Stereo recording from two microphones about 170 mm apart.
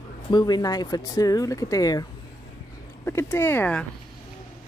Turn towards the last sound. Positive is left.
turn(degrees=10)  # may be behind; listen again after turning